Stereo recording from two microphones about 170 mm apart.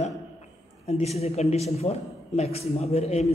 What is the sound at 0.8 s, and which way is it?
A man's voice, 40° left (ahead or behind).